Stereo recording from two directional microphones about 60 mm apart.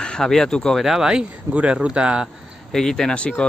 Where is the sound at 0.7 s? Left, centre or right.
Centre.